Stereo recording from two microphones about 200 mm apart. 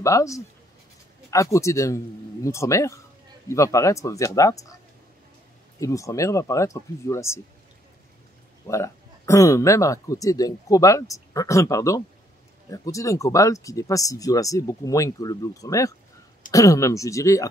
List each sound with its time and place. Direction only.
0.0 s speech: 15° left (ahead or behind)
5.8 s speech: 15° left (ahead or behind)
8.6 s speech: 15° left (ahead or behind)